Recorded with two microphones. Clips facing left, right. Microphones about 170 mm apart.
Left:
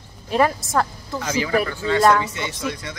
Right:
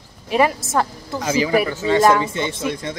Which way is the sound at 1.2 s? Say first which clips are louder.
Right 4 dB; 25° right (ahead or behind).